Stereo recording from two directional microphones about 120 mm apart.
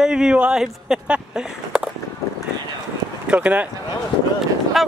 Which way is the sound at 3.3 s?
10° right (ahead or behind).